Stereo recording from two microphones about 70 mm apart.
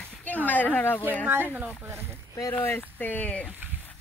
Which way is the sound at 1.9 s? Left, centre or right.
Right.